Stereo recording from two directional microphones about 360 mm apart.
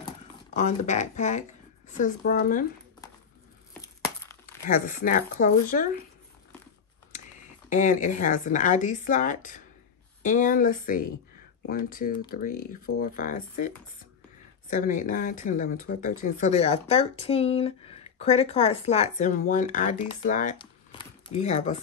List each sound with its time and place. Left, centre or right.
0.0 s a sound: centre
1.9 s speech: left
3.8 s glass: centre
4.6 s speech: left
7.7 s speech: left
14.7 s speech: left